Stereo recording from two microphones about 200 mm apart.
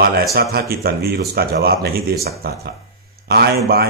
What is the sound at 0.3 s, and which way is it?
Speech, 50° right (ahead or behind).